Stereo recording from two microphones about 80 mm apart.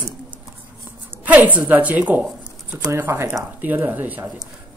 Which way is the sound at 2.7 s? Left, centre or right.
Right.